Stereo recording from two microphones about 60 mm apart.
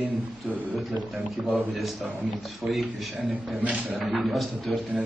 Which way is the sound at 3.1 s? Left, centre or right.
Centre.